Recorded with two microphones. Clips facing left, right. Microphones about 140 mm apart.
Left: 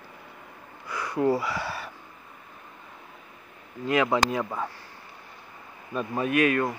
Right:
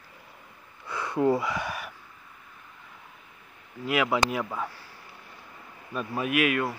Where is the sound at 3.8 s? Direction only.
10° right (ahead or behind).